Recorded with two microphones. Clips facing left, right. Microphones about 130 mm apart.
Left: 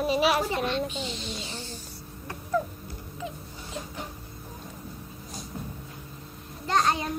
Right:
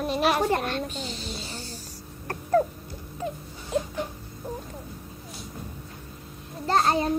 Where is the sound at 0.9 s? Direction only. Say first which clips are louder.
Even; 40° right (ahead or behind).